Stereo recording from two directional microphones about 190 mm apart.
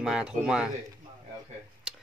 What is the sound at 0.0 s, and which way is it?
Speech, 5° right (ahead or behind).